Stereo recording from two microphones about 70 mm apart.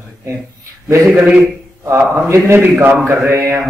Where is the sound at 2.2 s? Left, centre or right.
Right.